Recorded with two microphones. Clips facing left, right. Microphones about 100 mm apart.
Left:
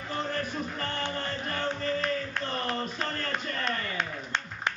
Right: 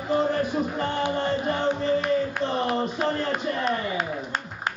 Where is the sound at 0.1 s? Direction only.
15° right (ahead or behind).